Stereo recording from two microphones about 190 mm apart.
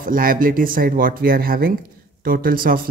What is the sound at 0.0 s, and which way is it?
Speech, 45° right (ahead or behind).